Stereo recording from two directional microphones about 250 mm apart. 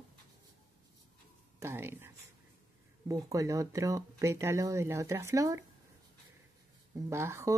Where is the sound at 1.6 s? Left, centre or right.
Centre.